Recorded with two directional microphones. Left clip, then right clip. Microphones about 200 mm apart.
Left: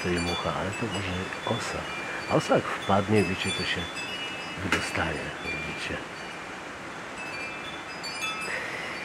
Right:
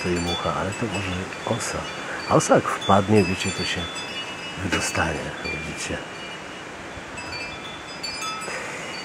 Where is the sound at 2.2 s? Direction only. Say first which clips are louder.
Right 6 dB; 20° right (ahead or behind).